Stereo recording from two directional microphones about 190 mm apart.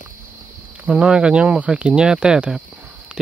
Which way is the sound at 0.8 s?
5° right (ahead or behind).